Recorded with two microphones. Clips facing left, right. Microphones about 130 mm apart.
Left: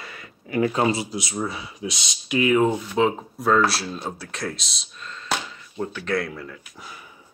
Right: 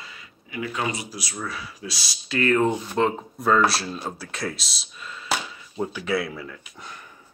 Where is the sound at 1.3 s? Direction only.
25° left (ahead or behind).